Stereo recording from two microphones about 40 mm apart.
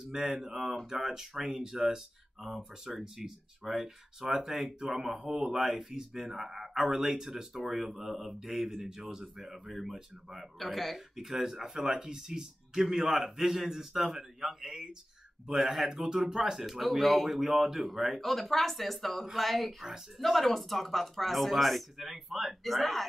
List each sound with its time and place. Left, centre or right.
0.1 s speech: centre
15.5 s speech: centre
15.8 s speech: centre